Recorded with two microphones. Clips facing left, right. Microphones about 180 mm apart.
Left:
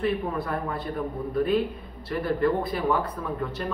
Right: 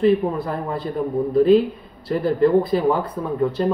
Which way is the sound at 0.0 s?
30° right (ahead or behind).